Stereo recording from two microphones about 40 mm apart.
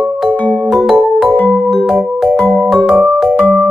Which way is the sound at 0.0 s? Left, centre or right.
Centre.